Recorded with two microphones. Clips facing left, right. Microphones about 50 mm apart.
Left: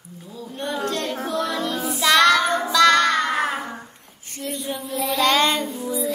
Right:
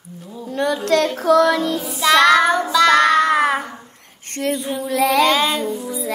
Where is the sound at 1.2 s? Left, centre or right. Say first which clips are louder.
Right 13 dB; right.